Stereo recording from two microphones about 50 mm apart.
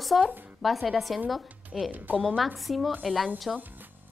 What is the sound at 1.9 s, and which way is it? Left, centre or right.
Speech, right.